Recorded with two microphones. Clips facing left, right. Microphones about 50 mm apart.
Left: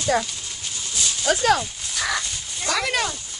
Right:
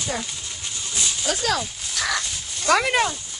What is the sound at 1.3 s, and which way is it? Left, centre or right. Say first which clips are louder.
Speech: left 6 dB; left.